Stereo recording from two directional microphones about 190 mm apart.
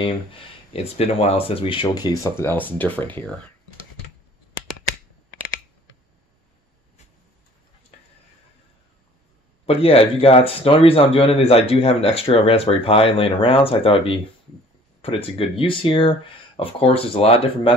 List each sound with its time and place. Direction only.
0.3 s speech: 30° left (ahead or behind); by 3.5 s 10° left (ahead or behind)
9.7 s speech: 30° left (ahead or behind)